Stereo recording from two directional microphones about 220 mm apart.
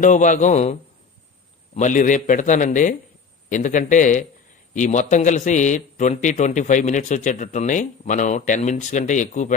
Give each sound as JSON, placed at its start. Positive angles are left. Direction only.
{"t": 0.0, "sound": "a man's voice", "side_deg": 35}
{"t": 1.8, "sound": "a man's voice", "side_deg": 35}